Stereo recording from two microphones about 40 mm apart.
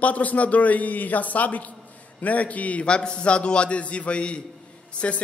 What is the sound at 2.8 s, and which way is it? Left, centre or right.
A man's voice, left.